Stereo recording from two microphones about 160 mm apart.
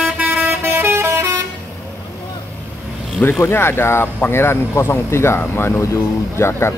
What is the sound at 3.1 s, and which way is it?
Speech, 10° left (ahead or behind).